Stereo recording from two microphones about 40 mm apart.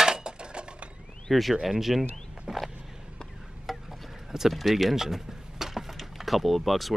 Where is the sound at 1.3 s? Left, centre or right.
Centre.